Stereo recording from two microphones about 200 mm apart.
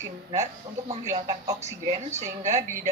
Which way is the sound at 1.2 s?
15° right (ahead or behind).